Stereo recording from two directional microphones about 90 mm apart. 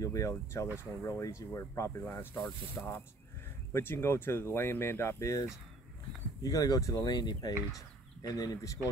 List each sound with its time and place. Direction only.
0.0 s speech: 35° left (ahead or behind)